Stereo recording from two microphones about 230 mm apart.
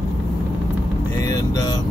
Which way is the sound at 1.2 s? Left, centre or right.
Centre.